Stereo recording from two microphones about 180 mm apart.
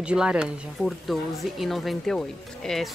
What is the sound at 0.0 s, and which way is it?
Speech, 5° right (ahead or behind).